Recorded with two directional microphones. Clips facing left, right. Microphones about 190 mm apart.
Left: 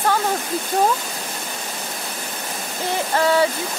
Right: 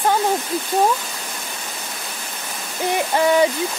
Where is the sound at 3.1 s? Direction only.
15° right (ahead or behind).